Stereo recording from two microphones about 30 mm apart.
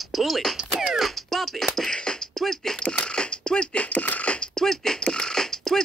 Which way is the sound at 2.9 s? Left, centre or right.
Left.